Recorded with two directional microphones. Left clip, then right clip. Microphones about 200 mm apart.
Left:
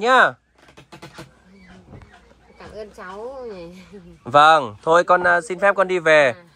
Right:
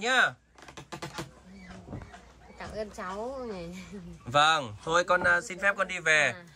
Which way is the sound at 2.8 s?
35° left (ahead or behind).